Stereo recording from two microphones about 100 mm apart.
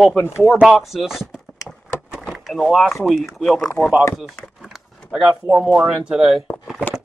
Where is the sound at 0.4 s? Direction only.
5° right (ahead or behind).